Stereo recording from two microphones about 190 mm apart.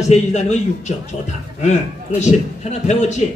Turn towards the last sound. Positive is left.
turn(degrees=35)  # may be behind; listen again after turning